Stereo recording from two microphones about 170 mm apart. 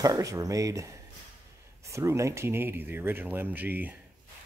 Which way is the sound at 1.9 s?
15° right (ahead or behind).